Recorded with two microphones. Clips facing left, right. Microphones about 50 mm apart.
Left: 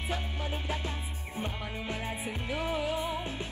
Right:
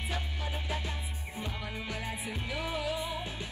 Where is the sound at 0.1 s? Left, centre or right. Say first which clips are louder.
Left 5 dB; left.